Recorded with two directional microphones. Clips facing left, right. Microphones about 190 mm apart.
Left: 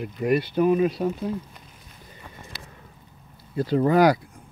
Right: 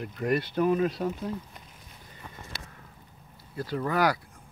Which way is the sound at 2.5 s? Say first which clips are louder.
Left 1 dB; 50° right (ahead or behind).